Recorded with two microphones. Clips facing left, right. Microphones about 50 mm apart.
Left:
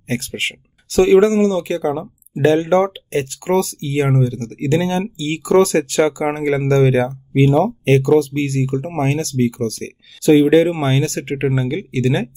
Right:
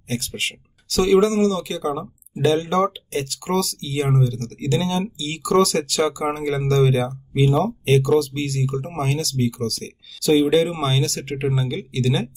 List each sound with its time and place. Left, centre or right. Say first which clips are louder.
0.1 s speech: left 4 dB; left